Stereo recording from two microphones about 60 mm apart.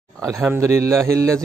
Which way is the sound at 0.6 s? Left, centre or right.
Right.